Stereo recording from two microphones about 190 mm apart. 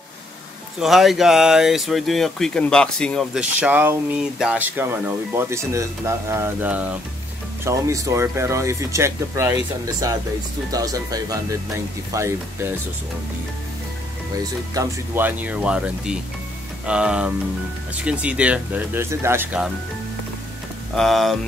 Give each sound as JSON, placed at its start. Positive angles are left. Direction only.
{"t": 0.7, "sound": "speech", "side_deg": 0}
{"t": 14.7, "sound": "speech", "side_deg": -15}
{"t": 20.9, "sound": "speech", "side_deg": 0}